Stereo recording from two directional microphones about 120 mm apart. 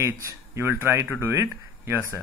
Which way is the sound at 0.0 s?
25° right (ahead or behind).